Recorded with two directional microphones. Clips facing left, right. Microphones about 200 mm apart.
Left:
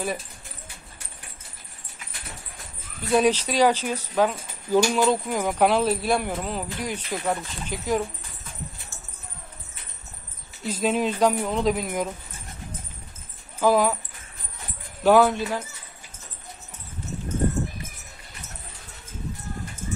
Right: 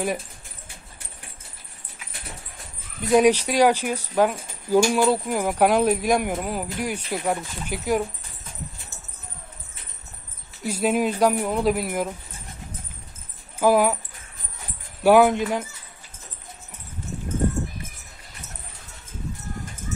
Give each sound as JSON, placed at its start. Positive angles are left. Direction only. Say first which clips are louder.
{"t": 3.0, "sound": "speech", "louder": "right 3 dB", "side_deg": -15}
{"t": 10.6, "sound": "speech", "louder": "right 2 dB", "side_deg": -10}
{"t": 13.6, "sound": "speech", "louder": "right 2 dB", "side_deg": -10}
{"t": 15.0, "sound": "speech", "louder": "right 2 dB", "side_deg": -15}